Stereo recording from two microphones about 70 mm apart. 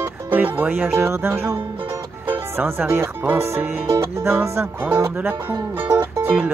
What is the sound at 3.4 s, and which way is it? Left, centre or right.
Music, right.